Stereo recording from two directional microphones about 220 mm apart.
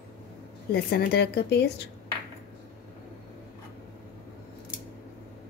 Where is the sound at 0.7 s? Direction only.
45° left (ahead or behind).